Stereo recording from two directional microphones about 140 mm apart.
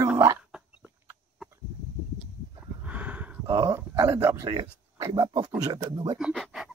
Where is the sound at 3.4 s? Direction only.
20° right (ahead or behind).